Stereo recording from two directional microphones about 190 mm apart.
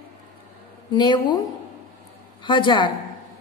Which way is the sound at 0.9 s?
20° left (ahead or behind).